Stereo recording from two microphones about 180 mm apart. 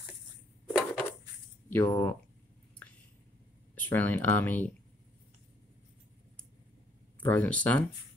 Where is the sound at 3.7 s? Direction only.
10° left (ahead or behind).